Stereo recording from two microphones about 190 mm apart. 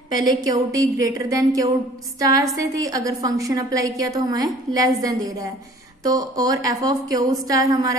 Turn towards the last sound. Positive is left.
turn(degrees=-20)  # may be behind; listen again after turning